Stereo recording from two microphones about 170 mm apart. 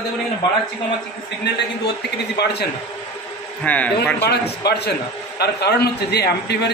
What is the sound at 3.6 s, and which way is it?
Speech, 10° left (ahead or behind).